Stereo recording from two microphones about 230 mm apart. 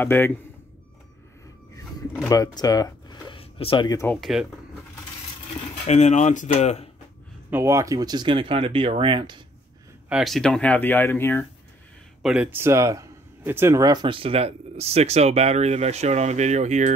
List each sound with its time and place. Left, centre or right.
0.0 s speech: centre
2.2 s speech: centre
4.2 s speech: centre
5.9 s speech: left
7.5 s speech: centre
10.0 s speech: centre
12.2 s speech: centre; by 16.9 s right